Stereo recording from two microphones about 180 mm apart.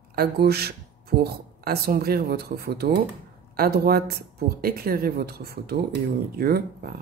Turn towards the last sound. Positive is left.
turn(degrees=-55)  # may be behind; listen again after turning